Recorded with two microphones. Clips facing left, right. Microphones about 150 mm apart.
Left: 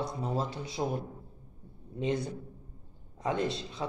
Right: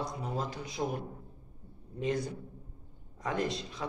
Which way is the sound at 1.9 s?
25° left (ahead or behind).